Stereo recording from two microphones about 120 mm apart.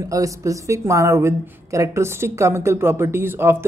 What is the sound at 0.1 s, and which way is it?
Speech, 25° right (ahead or behind).